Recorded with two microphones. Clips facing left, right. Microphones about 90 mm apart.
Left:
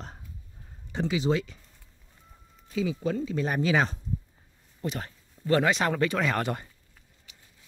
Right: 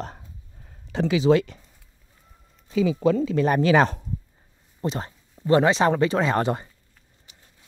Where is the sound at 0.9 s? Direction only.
90° right; by 1.6 s 65° right (ahead or behind).